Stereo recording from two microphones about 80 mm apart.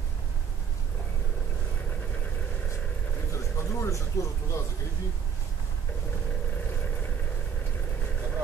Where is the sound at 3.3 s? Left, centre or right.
Left.